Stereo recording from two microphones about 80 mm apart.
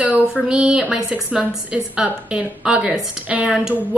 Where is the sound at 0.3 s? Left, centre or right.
Centre.